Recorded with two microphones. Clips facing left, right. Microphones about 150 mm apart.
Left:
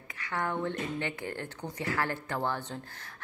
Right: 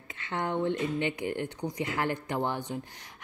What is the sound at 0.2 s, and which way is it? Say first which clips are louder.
Speech: right 2 dB; 20° right (ahead or behind).